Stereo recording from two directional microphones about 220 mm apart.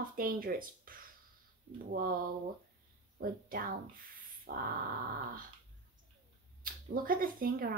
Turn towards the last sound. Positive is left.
turn(degrees=-40)  # may be behind; listen again after turning